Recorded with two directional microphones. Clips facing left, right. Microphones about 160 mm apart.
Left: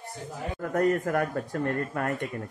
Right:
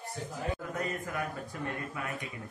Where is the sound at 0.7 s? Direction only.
60° left (ahead or behind).